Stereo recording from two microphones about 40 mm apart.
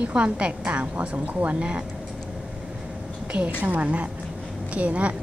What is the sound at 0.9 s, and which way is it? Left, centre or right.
Speech, right.